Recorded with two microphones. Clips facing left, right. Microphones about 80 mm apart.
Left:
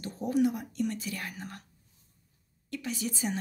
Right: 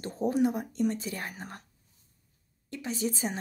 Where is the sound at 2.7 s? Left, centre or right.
Right.